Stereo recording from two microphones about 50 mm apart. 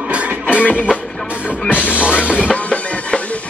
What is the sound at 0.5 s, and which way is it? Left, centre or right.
Music, left.